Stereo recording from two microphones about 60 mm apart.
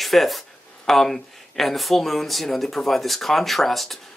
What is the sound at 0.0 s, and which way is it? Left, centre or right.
Speech, centre.